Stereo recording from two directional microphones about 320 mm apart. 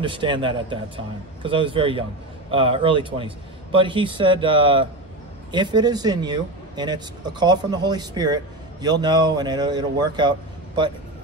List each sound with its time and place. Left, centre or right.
0.0 s a man's voice: centre